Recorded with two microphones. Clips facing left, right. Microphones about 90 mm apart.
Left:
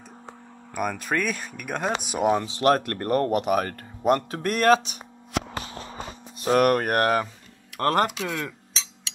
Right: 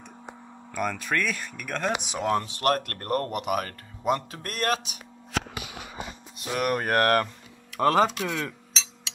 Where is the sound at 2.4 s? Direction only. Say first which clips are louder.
Left 4 dB; 90° left.